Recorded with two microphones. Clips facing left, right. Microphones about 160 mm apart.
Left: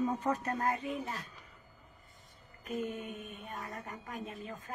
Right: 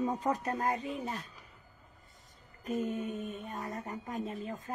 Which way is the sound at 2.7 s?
35° right (ahead or behind).